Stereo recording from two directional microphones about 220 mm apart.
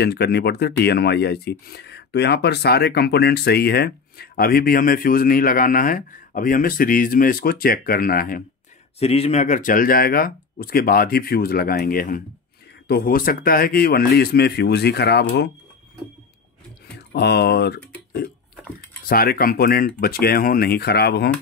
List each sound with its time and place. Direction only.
0.0 s speech: 45° left (ahead or behind)
9.0 s speech: 25° left (ahead or behind); by 15.5 s 50° left (ahead or behind)
17.1 s speech: 50° left (ahead or behind)
19.0 s speech: 45° left (ahead or behind)